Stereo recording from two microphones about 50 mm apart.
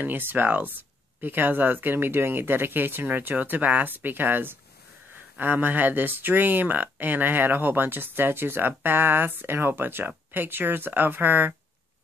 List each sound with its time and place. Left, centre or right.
0.0 s speech: right